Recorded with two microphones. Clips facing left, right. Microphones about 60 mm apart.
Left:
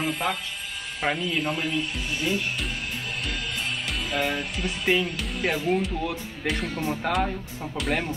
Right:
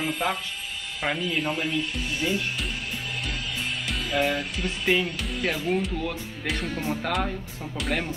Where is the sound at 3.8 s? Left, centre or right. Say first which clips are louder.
Right 3 dB; centre.